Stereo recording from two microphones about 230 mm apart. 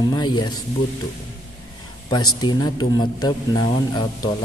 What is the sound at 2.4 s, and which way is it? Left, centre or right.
Speech, centre.